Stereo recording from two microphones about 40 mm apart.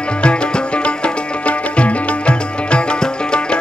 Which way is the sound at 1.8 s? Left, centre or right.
Left.